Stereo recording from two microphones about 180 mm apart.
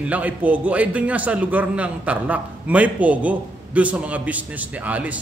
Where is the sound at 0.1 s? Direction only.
10° right (ahead or behind).